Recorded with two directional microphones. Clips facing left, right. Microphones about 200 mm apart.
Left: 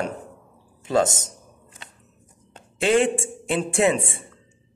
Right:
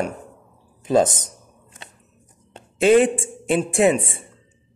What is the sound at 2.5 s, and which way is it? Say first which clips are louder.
Speech: right 5 dB; 20° right (ahead or behind).